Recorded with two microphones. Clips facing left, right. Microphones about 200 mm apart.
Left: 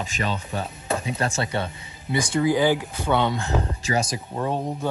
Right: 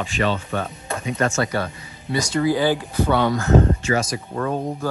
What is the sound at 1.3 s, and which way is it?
Speech, 25° left (ahead or behind).